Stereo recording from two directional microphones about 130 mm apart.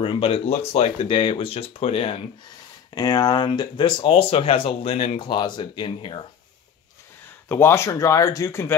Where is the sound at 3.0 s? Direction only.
30° left (ahead or behind).